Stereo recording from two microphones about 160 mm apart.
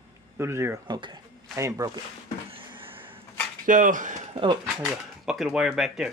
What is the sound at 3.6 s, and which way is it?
Speech, 55° right (ahead or behind).